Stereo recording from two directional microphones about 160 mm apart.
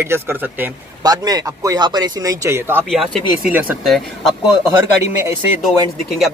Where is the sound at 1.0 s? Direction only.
25° right (ahead or behind).